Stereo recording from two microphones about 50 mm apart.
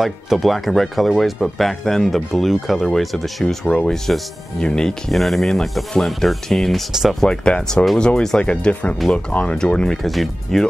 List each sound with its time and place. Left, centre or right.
0.0 s speech: centre
3.6 s speech: centre
5.1 s speech: centre
6.9 s speech: centre
7.2 s speech: centre
10.0 s speech: centre